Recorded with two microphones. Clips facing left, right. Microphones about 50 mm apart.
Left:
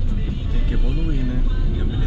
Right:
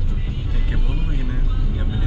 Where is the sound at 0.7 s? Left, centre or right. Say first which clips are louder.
Left 4 dB; centre.